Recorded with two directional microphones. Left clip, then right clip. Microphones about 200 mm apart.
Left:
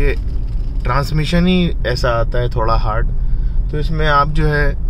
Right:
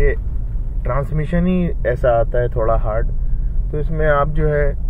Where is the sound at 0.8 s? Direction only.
20° left (ahead or behind).